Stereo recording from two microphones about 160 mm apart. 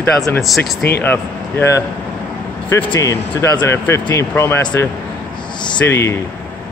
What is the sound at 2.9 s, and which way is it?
Speech, 20° left (ahead or behind).